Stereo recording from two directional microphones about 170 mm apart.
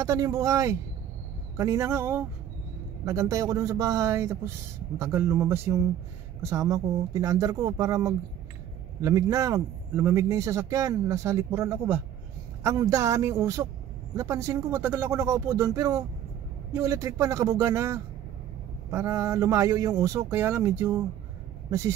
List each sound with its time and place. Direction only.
0.0 s speech: 20° right (ahead or behind)